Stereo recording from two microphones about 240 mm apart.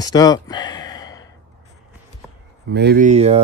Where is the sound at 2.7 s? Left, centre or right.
Right.